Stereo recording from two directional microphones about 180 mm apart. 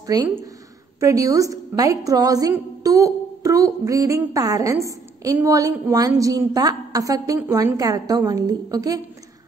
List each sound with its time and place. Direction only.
0.0 s a woman's voice: 20° right (ahead or behind)